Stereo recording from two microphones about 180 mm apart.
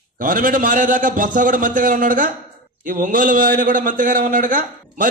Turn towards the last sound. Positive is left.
turn(degrees=-50)  # may be behind; listen again after turning